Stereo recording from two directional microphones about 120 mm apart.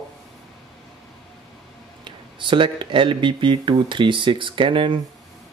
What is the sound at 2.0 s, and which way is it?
Speech, 45° right (ahead or behind).